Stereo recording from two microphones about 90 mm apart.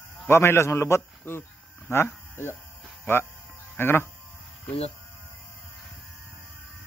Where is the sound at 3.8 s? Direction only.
25° left (ahead or behind).